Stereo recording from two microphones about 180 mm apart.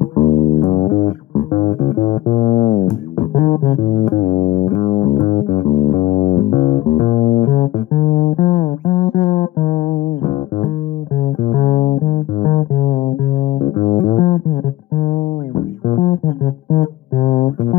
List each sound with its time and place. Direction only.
0.0 s music: 40° left (ahead or behind)
11.5 s music: 40° left (ahead or behind)
16.7 s music: 40° left (ahead or behind)